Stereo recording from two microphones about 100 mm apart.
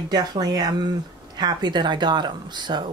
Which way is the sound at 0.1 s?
45° right (ahead or behind).